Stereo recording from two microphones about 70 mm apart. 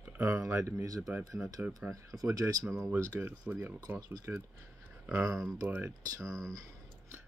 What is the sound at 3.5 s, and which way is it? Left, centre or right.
Speech, right.